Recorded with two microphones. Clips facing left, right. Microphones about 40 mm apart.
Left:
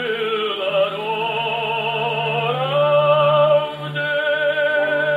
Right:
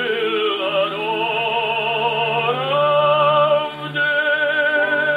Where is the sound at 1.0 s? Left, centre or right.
Centre.